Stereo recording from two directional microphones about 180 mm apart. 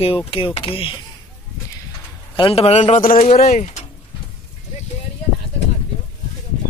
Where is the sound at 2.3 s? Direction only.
30° left (ahead or behind).